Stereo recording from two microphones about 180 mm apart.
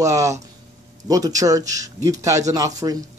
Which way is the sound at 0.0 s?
15° right (ahead or behind).